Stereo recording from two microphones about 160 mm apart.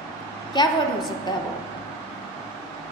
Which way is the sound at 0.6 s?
25° left (ahead or behind).